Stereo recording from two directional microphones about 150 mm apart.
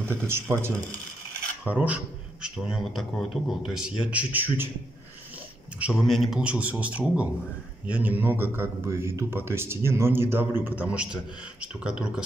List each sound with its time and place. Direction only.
0.0 s a man's voice: 15° right (ahead or behind)
1.6 s filing: 10° right (ahead or behind)
2.4 s a man's voice: 5° right (ahead or behind)
5.8 s a man's voice: 5° right (ahead or behind)